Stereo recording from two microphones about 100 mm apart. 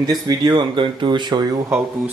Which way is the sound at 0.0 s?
40° right (ahead or behind).